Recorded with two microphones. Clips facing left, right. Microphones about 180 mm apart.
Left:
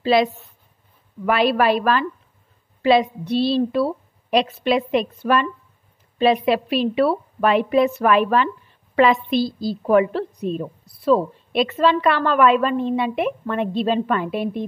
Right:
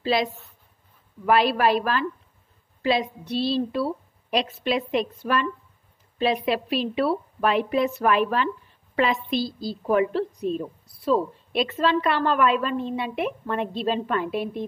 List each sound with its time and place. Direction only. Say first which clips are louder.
0.0 s a woman's voice: left 6 dB; 65° left (ahead or behind)